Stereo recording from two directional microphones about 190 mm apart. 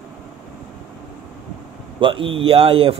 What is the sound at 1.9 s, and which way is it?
Speech, 25° right (ahead or behind).